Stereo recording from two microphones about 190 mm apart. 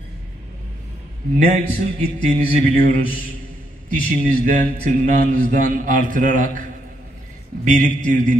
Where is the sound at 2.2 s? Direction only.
40° right (ahead or behind).